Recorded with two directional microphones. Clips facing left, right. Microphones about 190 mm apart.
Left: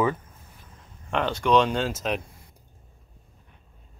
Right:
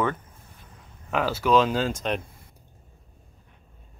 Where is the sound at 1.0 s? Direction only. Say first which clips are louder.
Even; 5° right (ahead or behind).